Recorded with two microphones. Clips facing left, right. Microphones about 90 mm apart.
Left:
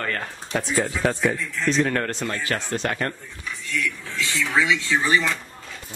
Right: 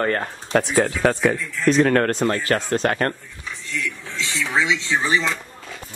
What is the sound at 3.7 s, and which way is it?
Speech, 20° right (ahead or behind).